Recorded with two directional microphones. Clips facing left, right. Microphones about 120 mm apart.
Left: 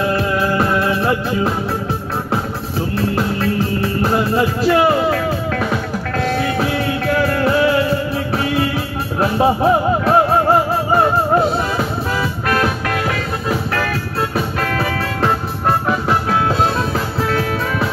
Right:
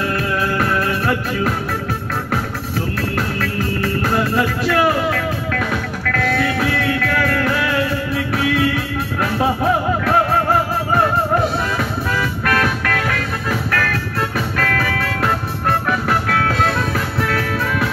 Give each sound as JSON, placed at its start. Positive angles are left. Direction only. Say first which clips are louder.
{"t": 0.0, "sound": "music", "louder": "left 3 dB", "side_deg": 25}
{"t": 4.0, "sound": "music", "louder": "left 3 dB", "side_deg": 20}